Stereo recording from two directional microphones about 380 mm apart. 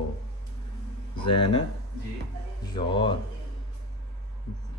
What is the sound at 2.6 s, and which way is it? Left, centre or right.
Speech, centre.